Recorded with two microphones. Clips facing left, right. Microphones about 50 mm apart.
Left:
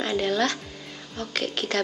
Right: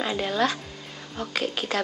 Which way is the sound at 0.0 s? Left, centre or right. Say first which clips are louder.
Left 1 dB; centre.